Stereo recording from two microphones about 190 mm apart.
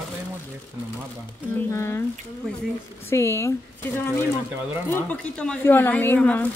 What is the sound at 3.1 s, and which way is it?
Speech, 15° left (ahead or behind).